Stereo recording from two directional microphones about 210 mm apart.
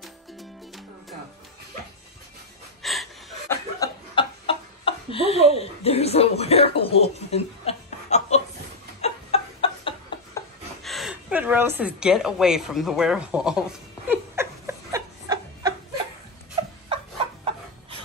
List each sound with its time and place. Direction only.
0.0 s music: centre (ahead or behind)
2.8 s gasp: centre (ahead or behind)
3.4 s chuckle: 20° left (ahead or behind)
5.5 s speech: 30° left (ahead or behind)
9.0 s chicken: 25° left (ahead or behind)
10.8 s a sound: centre (ahead or behind); by 15.7 s 15° right (ahead or behind)